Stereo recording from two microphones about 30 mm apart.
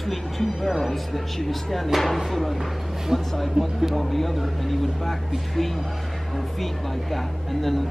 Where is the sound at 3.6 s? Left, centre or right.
Right.